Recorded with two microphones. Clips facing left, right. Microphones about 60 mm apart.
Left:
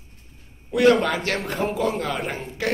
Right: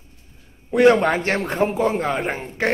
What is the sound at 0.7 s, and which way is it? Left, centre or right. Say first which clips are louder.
A man's voice: right 3 dB; right.